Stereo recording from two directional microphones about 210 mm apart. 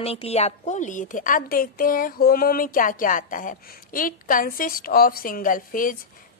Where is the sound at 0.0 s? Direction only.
30° left (ahead or behind).